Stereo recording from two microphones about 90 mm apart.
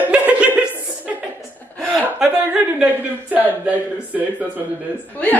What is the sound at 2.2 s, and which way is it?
A man's voice, 10° right (ahead or behind).